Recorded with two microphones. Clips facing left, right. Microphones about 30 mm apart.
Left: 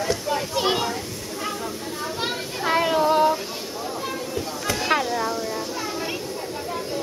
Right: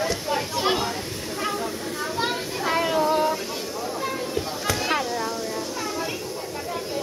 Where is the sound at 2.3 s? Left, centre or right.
Centre.